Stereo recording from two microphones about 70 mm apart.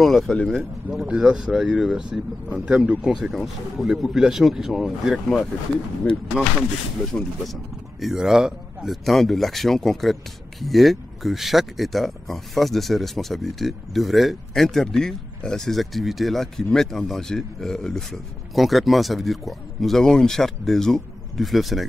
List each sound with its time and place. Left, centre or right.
0.0 s speech: centre
1.0 s speech: centre
6.0 s speech: left
7.1 s speech: centre
8.0 s speech: centre